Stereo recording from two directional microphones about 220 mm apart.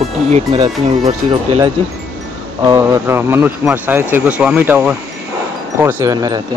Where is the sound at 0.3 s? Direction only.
25° right (ahead or behind).